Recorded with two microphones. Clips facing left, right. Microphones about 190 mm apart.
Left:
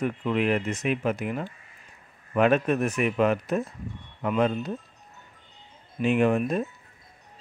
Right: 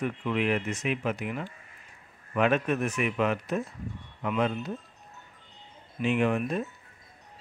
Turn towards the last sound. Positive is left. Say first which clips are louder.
# left 4 dB
turn(degrees=40)  # may be behind; listen again after turning